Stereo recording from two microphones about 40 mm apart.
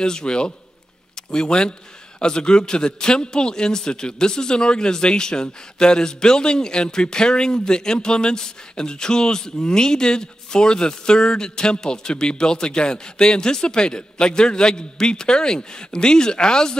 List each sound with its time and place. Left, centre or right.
0.0 s a man's voice: centre